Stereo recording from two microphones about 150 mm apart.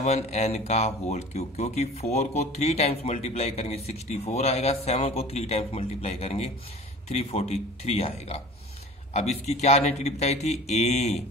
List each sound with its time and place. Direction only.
0.0 s speech: 45° left (ahead or behind)